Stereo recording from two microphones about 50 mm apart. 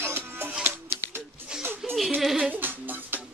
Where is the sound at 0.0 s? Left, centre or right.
Right.